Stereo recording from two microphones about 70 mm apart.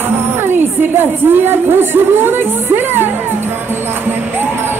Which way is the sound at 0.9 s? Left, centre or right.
Right.